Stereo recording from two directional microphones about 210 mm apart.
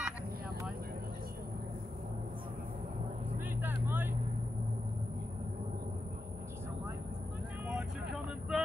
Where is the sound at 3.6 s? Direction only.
10° right (ahead or behind).